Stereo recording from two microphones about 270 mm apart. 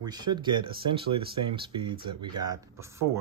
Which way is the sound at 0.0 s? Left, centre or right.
Centre.